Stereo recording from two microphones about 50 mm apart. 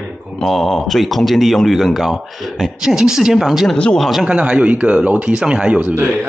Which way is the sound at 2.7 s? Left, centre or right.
Centre.